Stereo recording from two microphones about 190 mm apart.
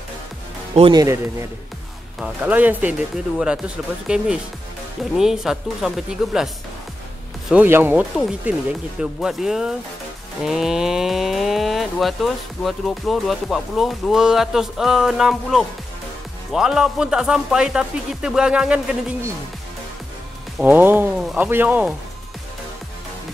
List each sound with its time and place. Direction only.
0.7 s speech: 25° right (ahead or behind)
2.1 s speech: 5° right (ahead or behind)
20.5 s speech: 10° right (ahead or behind)